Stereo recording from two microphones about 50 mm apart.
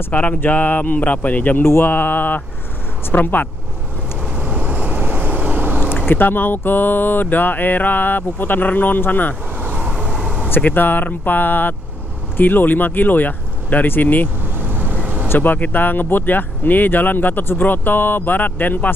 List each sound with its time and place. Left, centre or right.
0.1 s speech: left
1.6 s speech: left
1.9 s speech: left
4.4 s vehicle: right
6.0 s speech: left
9.6 s vehicle: right
9.9 s vehicle: centre
10.5 s speech: left
14.6 s vehicle: right
15.0 s vehicle: right
15.2 s speech: left